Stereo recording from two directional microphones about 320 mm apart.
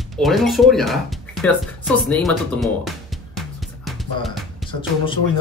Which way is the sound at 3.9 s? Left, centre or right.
Centre.